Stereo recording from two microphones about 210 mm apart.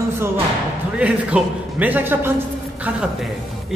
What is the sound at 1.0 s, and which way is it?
A man's voice, 5° right (ahead or behind).